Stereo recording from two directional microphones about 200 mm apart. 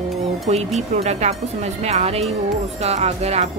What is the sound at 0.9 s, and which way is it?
Speech, 35° right (ahead or behind).